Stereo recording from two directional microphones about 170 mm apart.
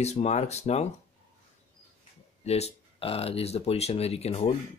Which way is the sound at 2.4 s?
40° left (ahead or behind).